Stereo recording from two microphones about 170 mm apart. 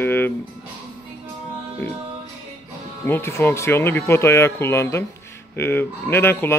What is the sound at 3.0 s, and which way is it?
Speech, 15° left (ahead or behind).